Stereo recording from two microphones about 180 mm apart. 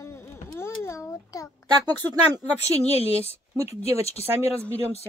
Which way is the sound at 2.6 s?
35° left (ahead or behind).